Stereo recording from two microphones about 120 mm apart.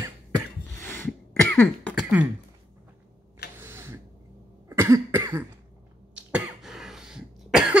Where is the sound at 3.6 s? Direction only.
20° right (ahead or behind).